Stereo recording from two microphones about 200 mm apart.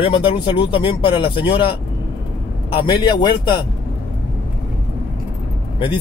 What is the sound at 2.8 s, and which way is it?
Speech, 20° left (ahead or behind).